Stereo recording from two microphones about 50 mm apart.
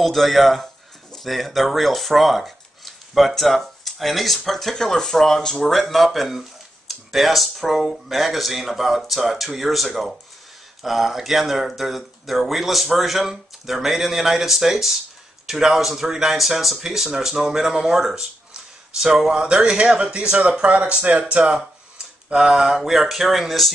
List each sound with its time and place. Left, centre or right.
0.0 s speech: centre